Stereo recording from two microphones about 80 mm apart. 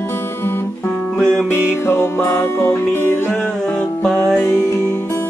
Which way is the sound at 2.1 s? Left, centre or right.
Left.